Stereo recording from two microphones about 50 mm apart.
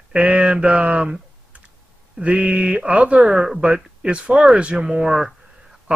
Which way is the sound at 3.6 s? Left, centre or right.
Right.